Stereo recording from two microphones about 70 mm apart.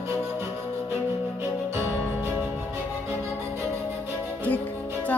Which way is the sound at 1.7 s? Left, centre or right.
Right.